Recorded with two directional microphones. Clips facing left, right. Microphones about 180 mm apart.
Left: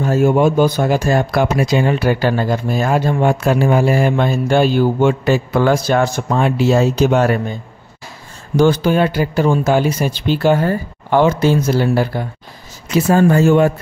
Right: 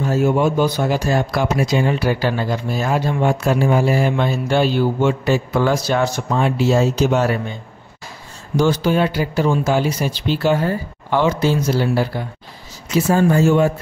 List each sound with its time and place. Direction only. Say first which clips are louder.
0.0 s speech: left 3 dB; 50° left (ahead or behind)
8.5 s speech: left 3 dB; 55° left (ahead or behind)
12.9 s speech: left 3 dB; 65° left (ahead or behind)